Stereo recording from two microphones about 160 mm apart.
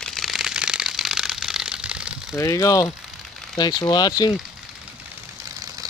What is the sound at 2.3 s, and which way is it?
Speech, 20° left (ahead or behind).